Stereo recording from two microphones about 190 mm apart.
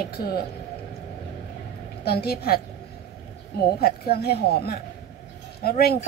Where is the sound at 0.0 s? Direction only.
55° left (ahead or behind).